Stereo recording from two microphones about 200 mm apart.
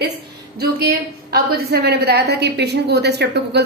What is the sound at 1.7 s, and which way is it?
A woman's voice, 55° right (ahead or behind).